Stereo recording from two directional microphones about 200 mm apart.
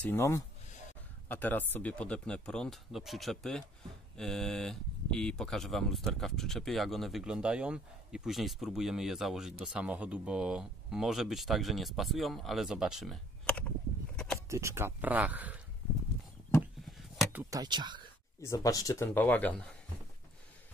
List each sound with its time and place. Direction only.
0.0 s a man's voice: 10° left (ahead or behind)
14.5 s speech: 15° right (ahead or behind)
17.2 s speech: 10° right (ahead or behind)
18.4 s a man's voice: 15° left (ahead or behind)